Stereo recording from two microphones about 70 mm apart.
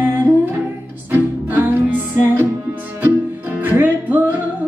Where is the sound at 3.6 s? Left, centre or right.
Right.